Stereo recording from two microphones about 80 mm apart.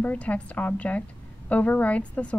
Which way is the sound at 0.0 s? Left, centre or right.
Centre.